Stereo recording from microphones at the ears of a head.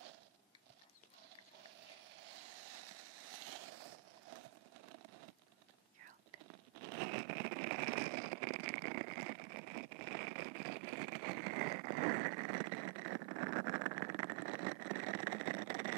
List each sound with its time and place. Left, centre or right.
1.8 s vehicle: right
6.0 s whispering: right